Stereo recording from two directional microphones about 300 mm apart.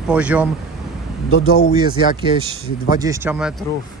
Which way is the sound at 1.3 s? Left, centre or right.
Left.